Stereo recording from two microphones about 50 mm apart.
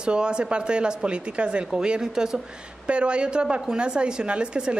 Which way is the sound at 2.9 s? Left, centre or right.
Right.